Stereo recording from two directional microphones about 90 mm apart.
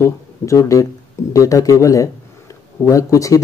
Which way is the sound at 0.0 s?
35° left (ahead or behind).